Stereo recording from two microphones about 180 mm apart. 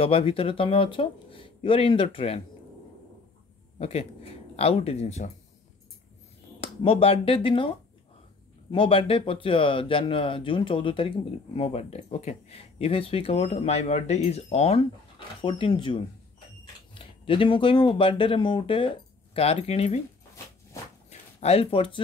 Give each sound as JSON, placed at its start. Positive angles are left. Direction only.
{"t": 0.0, "sound": "speech", "side_deg": 30}
{"t": 3.7, "sound": "speech", "side_deg": 35}
{"t": 6.6, "sound": "speech", "side_deg": 30}
{"t": 8.7, "sound": "speech", "side_deg": 30}
{"t": 21.1, "sound": "a sound", "side_deg": 35}